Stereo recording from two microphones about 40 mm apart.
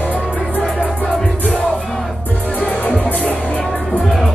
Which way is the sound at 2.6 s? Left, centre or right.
Left.